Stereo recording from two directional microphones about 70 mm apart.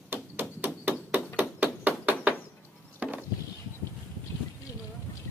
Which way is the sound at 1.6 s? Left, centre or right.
Right.